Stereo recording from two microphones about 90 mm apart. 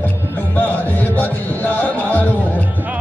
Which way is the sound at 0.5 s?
20° left (ahead or behind).